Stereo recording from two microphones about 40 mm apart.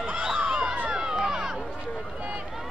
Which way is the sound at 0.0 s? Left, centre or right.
Right.